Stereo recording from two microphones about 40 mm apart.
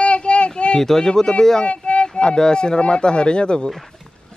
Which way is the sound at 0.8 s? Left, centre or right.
Centre.